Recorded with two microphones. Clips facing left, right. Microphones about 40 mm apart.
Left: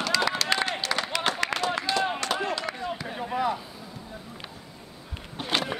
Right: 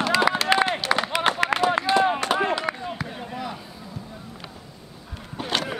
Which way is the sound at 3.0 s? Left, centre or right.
Centre.